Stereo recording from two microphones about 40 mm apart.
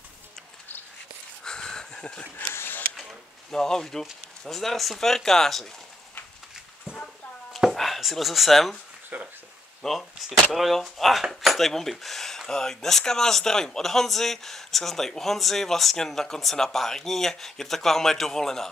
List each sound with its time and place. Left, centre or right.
1.4 s a sound: centre
3.5 s speech: centre
7.7 s speech: centre
9.1 s speech: right
9.8 s speech: centre